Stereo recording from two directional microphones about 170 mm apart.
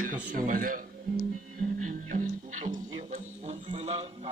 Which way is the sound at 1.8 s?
50° right (ahead or behind).